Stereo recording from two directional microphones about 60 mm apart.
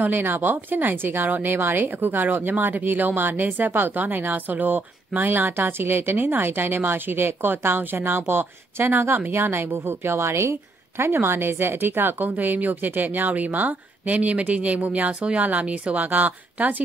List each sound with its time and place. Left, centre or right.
0.0 s a woman's voice: right